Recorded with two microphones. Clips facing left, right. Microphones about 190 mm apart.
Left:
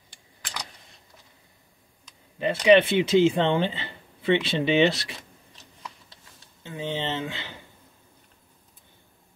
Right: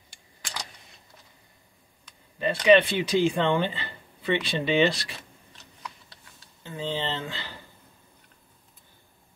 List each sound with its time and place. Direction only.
2.3 s speech: 20° left (ahead or behind)
6.6 s speech: 20° left (ahead or behind)